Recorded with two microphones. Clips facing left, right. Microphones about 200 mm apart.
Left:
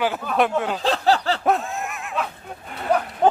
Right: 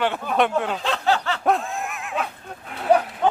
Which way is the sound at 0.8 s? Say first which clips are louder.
Left 3 dB; 35° left (ahead or behind).